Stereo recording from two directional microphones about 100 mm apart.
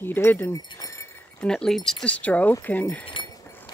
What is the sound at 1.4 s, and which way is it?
Speech, 5° left (ahead or behind).